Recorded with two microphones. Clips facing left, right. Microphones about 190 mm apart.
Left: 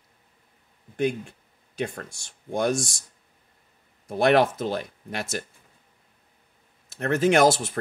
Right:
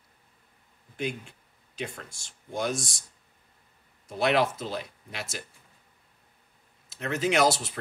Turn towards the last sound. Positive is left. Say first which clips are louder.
# left 5 dB
turn(degrees=50)  # may be behind; listen again after turning